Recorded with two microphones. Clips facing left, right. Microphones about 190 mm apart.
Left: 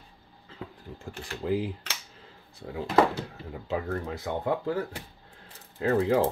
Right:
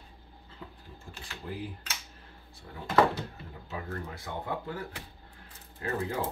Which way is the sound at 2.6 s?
60° left (ahead or behind).